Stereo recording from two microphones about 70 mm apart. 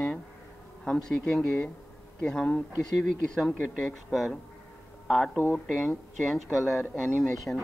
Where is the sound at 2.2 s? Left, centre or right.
Centre.